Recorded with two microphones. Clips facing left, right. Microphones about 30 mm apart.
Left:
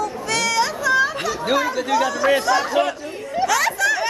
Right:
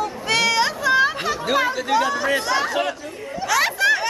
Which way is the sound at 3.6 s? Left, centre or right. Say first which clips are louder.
Right 5 dB; right.